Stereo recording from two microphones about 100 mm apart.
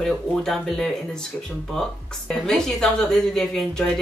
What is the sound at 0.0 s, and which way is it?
A woman's voice, 5° left (ahead or behind).